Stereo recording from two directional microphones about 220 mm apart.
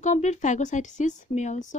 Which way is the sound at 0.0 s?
35° left (ahead or behind).